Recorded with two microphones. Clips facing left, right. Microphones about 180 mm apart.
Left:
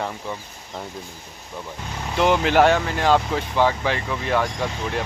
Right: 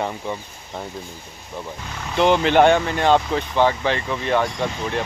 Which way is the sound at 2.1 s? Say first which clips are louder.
Right 2 dB; 5° left (ahead or behind).